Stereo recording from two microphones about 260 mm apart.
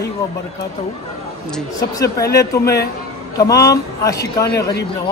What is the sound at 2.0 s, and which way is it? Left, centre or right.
A man's voice, centre.